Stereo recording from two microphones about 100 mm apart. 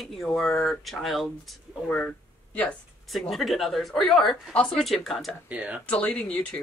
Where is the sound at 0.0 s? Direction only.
Centre (ahead or behind).